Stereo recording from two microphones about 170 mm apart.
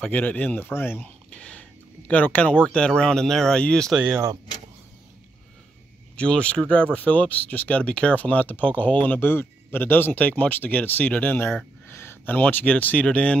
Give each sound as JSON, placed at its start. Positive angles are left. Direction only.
{"t": 0.0, "sound": "speech", "side_deg": 10}
{"t": 4.1, "sound": "speech", "side_deg": -20}
{"t": 6.1, "sound": "speech", "side_deg": 5}